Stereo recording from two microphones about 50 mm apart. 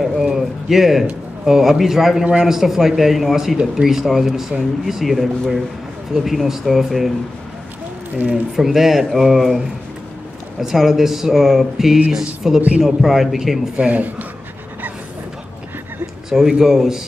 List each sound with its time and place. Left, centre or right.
0.0 s a sound: centre
1.4 s speech: centre
8.5 s speech: centre
10.6 s speech: centre
13.7 s speech: right
16.3 s speech: centre